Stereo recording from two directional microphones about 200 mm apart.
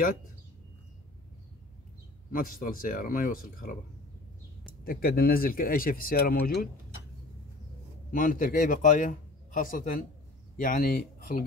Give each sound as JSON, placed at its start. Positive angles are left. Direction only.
{"t": 2.3, "sound": "speech", "side_deg": 45}
{"t": 4.8, "sound": "speech", "side_deg": 50}
{"t": 8.1, "sound": "a man's voice", "side_deg": 45}